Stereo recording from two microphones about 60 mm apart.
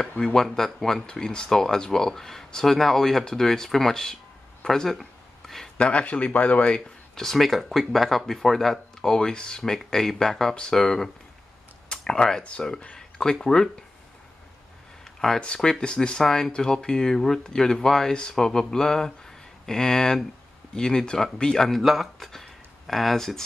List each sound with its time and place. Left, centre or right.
0.2 s speech: centre
5.4 s a sound: centre
5.8 s speech: centre
7.2 s speech: centre
15.0 s speech: centre